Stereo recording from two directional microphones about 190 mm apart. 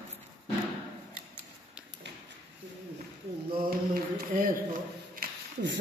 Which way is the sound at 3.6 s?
50° right (ahead or behind).